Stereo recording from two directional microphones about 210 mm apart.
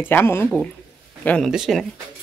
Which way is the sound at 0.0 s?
10° left (ahead or behind).